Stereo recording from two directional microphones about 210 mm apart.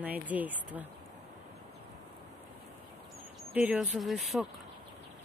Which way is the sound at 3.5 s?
5° right (ahead or behind).